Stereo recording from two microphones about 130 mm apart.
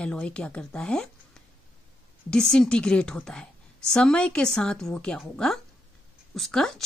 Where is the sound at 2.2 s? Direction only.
5° left (ahead or behind).